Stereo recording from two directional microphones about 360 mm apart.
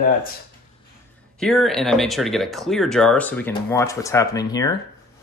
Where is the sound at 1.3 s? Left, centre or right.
Centre.